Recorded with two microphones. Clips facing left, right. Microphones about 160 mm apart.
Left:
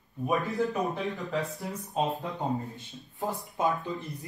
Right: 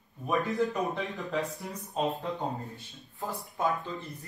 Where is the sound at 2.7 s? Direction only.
20° left (ahead or behind).